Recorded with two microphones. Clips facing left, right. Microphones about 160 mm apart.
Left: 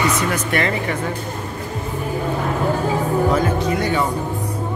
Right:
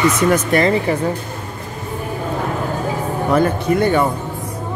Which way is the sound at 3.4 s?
55° right (ahead or behind).